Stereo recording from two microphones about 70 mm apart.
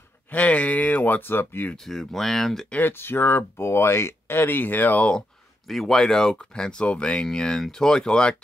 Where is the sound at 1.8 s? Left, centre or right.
Centre.